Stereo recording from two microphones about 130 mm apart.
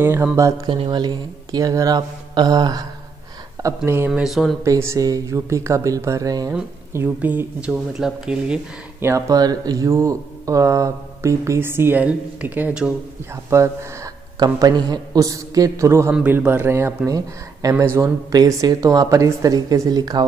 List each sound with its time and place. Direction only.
0.0 s speech: 20° right (ahead or behind)
0.7 s speech: 35° right (ahead or behind); by 4.1 s 20° right (ahead or behind)
4.1 s speech: 5° right (ahead or behind)
4.6 s speech: 25° right (ahead or behind)
6.9 s speech: 15° right (ahead or behind)
9.0 s speech: 25° right (ahead or behind); by 12.9 s 10° right (ahead or behind)
13.5 s speech: 20° right (ahead or behind)
14.4 s speech: 30° right (ahead or behind)
17.1 s speech: 25° right (ahead or behind)